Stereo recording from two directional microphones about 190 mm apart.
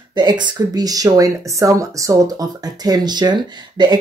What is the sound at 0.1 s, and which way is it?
Speech, 25° right (ahead or behind).